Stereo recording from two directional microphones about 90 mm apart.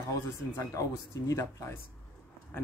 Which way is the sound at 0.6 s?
35° left (ahead or behind).